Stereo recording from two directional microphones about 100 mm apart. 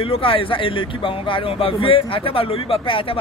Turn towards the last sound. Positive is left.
turn(degrees=65)  # may be behind; listen again after turning